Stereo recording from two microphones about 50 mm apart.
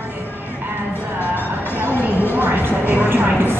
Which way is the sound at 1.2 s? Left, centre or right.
Left.